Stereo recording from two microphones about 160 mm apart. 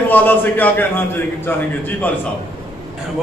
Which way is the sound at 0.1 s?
10° left (ahead or behind).